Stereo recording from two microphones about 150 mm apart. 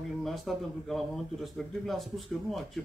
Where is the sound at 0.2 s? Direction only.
Centre (ahead or behind).